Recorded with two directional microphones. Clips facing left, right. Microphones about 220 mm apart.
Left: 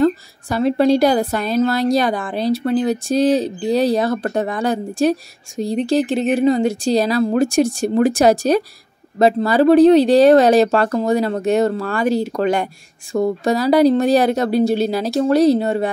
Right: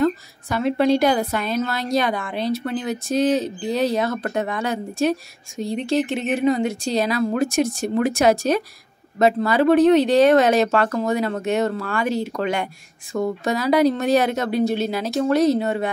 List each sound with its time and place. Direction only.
0.0 s a woman's voice: 35° left (ahead or behind)